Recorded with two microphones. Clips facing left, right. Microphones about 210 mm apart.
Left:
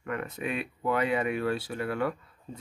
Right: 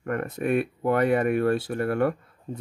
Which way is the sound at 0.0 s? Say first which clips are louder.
Right 6 dB; 50° right (ahead or behind).